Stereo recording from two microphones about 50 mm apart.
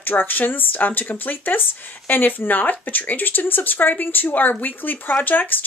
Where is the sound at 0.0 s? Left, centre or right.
Left.